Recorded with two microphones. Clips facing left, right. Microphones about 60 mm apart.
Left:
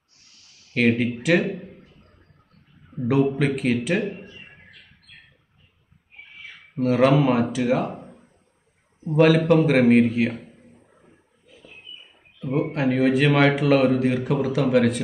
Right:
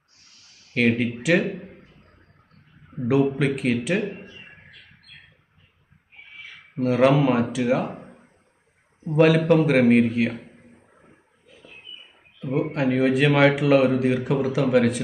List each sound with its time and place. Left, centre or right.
0.7 s speech: centre
3.3 s speech: centre
6.8 s speech: centre
7.9 s a sound: right
9.0 s speech: centre
12.4 s speech: centre